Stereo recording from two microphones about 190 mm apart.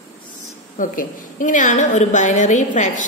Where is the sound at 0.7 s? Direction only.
45° left (ahead or behind).